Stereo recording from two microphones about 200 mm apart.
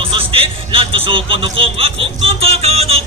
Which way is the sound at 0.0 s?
25° right (ahead or behind).